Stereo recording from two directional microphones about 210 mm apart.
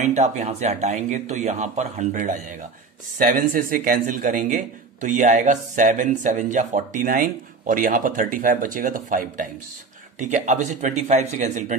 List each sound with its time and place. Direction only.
0.0 s a man's voice: 35° right (ahead or behind)